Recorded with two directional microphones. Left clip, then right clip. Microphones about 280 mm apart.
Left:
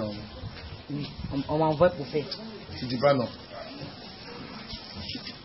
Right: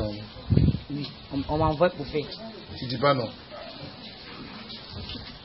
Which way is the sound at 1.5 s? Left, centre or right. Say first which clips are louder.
Left 1 dB; centre.